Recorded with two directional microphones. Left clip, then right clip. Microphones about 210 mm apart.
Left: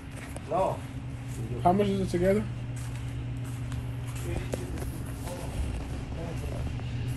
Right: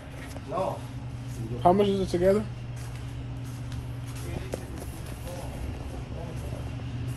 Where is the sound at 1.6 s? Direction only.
20° right (ahead or behind).